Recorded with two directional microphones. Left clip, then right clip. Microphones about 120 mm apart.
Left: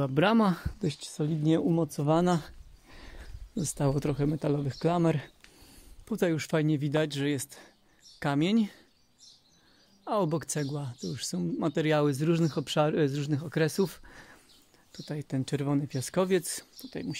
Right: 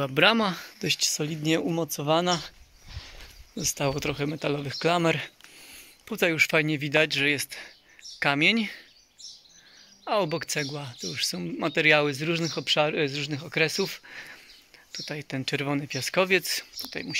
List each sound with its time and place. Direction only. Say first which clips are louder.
0.0 s speech: right 4 dB; 35° left (ahead or behind)
0.8 s speech: right 7 dB; 15° left (ahead or behind)
1.8 s speech: right 2 dB; 40° left (ahead or behind)
2.2 s speech: right 2 dB; 60° left (ahead or behind)
3.5 s speech: right 3 dB; 45° left (ahead or behind)
10.0 s speech: right 3 dB; 40° left (ahead or behind)
10.6 s speech: right 3 dB; 30° left (ahead or behind)
12.1 s speech: right 1 dB; 70° left (ahead or behind)
15.4 s speech: right 4 dB; 25° left (ahead or behind)
16.1 s speech: right 5 dB; 30° left (ahead or behind)